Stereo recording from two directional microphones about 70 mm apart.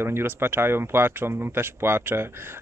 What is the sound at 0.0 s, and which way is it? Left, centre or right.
Speech, right.